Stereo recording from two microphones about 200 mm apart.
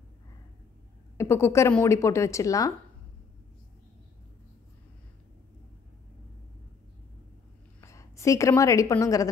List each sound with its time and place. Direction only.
1.1 s a woman's voice: 15° left (ahead or behind)
7.8 s a woman's voice: 15° left (ahead or behind)